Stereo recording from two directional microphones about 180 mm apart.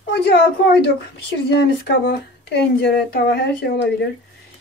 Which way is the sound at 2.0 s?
65° left (ahead or behind).